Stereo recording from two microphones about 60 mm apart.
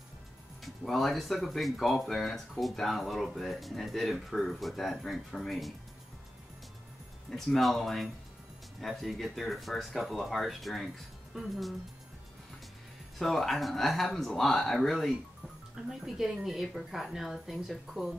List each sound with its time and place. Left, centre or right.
0.6 s speech: centre
7.2 s speech: centre
13.2 s speech: centre
15.7 s speech: centre